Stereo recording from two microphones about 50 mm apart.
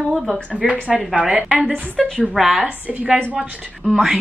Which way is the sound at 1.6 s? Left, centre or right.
Left.